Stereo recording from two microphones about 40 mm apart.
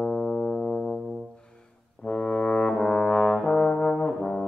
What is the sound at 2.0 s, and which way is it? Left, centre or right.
Brass instrument, centre.